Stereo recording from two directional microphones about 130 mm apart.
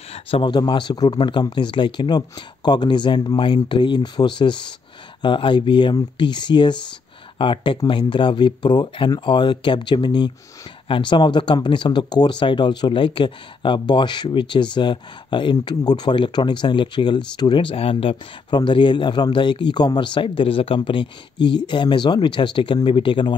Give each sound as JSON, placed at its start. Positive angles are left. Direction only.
{"t": 0.1, "sound": "speech", "side_deg": 40}